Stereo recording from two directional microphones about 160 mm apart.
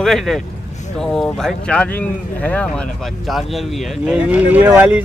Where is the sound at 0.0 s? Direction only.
Centre (ahead or behind).